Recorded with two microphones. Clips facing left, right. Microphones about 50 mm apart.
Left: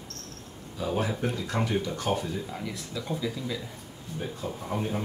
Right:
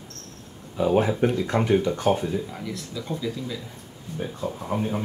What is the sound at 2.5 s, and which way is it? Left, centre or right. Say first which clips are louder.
Speech: right 2 dB; centre.